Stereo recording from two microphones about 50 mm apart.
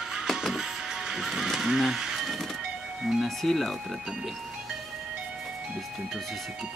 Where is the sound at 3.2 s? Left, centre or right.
Centre.